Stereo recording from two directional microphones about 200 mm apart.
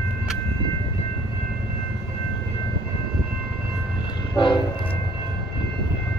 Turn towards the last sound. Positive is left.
turn(degrees=25)  # may be behind; listen again after turning